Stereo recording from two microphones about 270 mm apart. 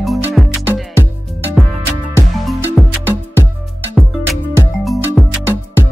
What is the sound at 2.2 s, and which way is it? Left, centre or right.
Music, centre.